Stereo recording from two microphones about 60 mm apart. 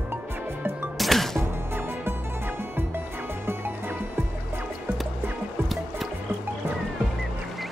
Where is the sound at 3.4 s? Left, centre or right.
Right.